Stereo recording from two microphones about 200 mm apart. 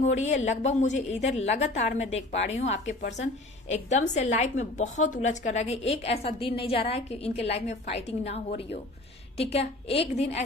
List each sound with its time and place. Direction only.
0.0 s a woman's voice: 35° left (ahead or behind)